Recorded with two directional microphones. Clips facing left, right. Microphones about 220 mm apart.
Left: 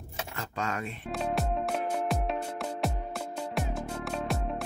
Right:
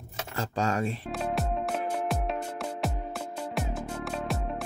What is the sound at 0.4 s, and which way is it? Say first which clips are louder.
Speech: right 7 dB; 30° right (ahead or behind).